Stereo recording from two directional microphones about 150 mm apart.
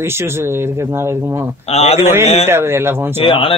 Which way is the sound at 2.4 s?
15° right (ahead or behind).